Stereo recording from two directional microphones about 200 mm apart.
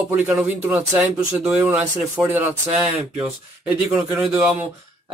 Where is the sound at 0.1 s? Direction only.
10° right (ahead or behind).